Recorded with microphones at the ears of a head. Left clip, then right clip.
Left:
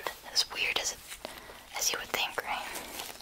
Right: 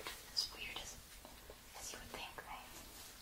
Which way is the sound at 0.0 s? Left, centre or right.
Left.